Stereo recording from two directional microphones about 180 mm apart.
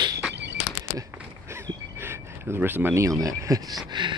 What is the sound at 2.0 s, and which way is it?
Speech, 10° right (ahead or behind).